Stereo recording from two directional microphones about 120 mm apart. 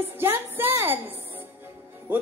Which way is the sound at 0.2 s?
20° right (ahead or behind).